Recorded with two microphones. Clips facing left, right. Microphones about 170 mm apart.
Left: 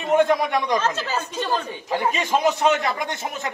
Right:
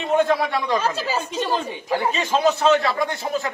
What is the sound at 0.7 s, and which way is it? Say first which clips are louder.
Speech: right 1 dB; 10° right (ahead or behind).